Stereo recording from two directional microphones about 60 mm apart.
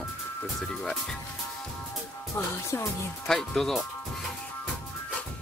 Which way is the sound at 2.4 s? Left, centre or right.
Left.